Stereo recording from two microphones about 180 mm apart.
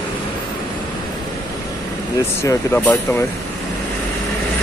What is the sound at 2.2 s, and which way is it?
Speech, 15° left (ahead or behind).